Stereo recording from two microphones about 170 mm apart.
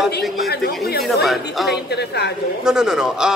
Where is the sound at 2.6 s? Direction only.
5° right (ahead or behind).